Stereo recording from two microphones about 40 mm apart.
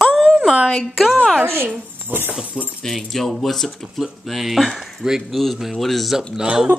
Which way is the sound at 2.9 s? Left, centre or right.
Centre.